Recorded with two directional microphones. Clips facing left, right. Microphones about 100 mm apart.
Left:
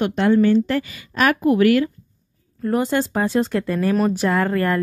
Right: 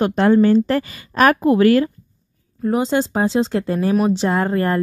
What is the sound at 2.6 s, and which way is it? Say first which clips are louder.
A woman's voice: right 2 dB; 20° right (ahead or behind).